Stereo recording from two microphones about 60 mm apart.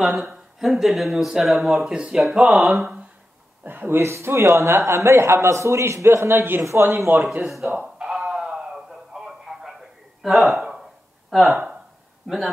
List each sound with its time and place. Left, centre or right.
0.0 s speech: centre
1.9 s speech: centre
3.6 s speech: right
4.0 s a man's voice: right
7.4 s speech: centre
8.0 s a sound: centre
10.2 s speech: centre